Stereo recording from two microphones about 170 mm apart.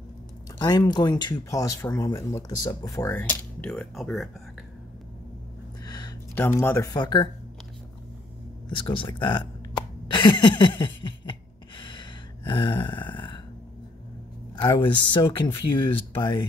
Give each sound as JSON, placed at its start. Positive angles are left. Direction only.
{"t": 0.6, "sound": "speech", "side_deg": 25}
{"t": 5.9, "sound": "a sound", "side_deg": 25}
{"t": 6.3, "sound": "speech", "side_deg": 10}
{"t": 8.6, "sound": "speech", "side_deg": 30}
{"t": 10.1, "sound": "a sound", "side_deg": 25}
{"t": 14.5, "sound": "speech", "side_deg": 25}